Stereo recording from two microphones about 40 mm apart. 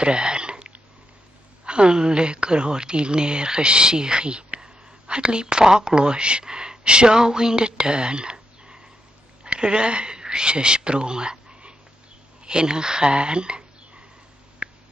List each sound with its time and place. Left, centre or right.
0.0 s hiccup: right
1.6 s speech: right